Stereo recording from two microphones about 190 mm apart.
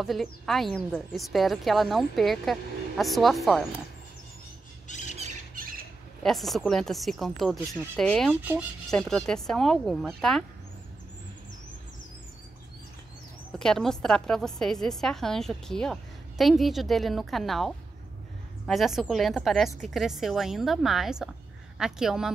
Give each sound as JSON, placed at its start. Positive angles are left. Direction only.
{"t": 0.0, "sound": "a woman's voice", "side_deg": 0}
{"t": 4.8, "sound": "squawk", "side_deg": 40}
{"t": 5.1, "sound": "squawk", "side_deg": -40}
{"t": 6.2, "sound": "a woman's voice", "side_deg": 0}
{"t": 8.3, "sound": "speech", "side_deg": -10}
{"t": 8.9, "sound": "a woman's voice", "side_deg": 5}
{"t": 13.6, "sound": "a woman's voice", "side_deg": 5}